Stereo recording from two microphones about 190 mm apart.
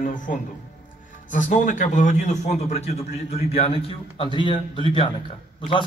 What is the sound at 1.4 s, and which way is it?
A man's voice, 40° left (ahead or behind).